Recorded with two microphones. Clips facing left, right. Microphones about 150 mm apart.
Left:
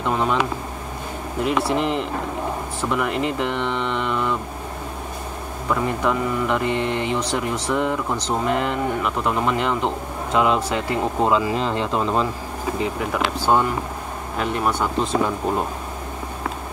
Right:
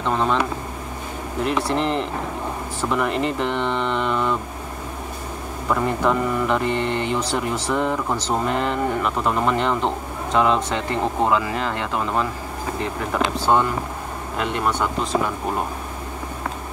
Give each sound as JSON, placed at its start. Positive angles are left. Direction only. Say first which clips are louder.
{"t": 0.0, "sound": "a sound", "louder": "even", "side_deg": 10}
{"t": 1.4, "sound": "speech", "louder": "left 1 dB", "side_deg": 5}
{"t": 5.7, "sound": "speech", "louder": "right 1 dB", "side_deg": 0}
{"t": 11.2, "sound": "speech", "louder": "left 2 dB", "side_deg": 20}